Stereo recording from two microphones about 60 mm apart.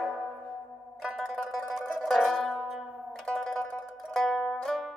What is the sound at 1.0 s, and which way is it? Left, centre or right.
Zither, centre.